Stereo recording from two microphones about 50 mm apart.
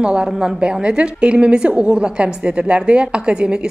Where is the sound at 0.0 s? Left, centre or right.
Centre.